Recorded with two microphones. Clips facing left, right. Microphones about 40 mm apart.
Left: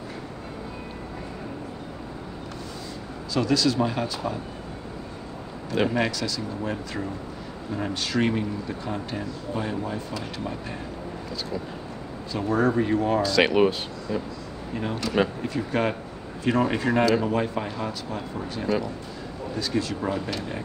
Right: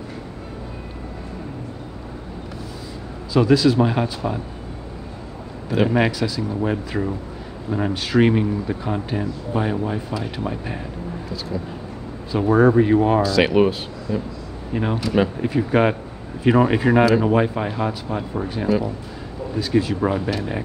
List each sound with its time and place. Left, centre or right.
3.3 s speech: centre
5.7 s speech: centre
5.9 s speech: centre
11.2 s speech: centre
12.3 s speech: centre
13.2 s speech: centre
14.7 s speech: right
15.0 s speech: centre
15.4 s speech: right